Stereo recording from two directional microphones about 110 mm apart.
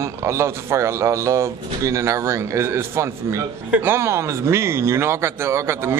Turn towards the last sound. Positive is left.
turn(degrees=-25)  # may be behind; listen again after turning